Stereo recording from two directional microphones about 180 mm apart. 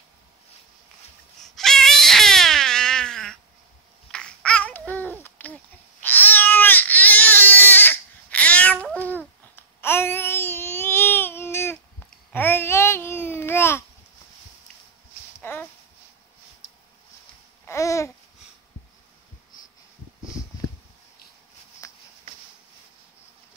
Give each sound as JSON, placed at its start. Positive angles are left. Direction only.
{"t": 1.4, "sound": "baby cry", "side_deg": 0}
{"t": 4.1, "sound": "babbling", "side_deg": 5}
{"t": 6.0, "sound": "baby cry", "side_deg": 10}
{"t": 9.8, "sound": "babbling", "side_deg": 15}
{"t": 15.3, "sound": "a sound", "side_deg": 10}
{"t": 17.6, "sound": "babbling", "side_deg": 15}
{"t": 21.8, "sound": "a sound", "side_deg": 20}